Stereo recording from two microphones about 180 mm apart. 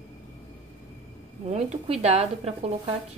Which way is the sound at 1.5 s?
40° right (ahead or behind).